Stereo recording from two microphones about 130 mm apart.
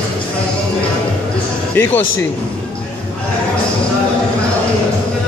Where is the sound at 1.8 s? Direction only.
15° left (ahead or behind).